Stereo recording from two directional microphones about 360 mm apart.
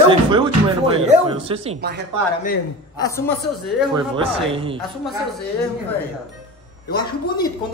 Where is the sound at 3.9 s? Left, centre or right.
Centre.